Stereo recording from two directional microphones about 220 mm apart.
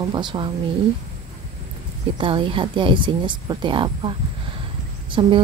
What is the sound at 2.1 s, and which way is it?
A woman's voice, 25° right (ahead or behind).